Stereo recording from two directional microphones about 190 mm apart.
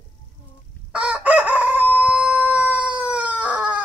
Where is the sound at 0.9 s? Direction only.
5° right (ahead or behind).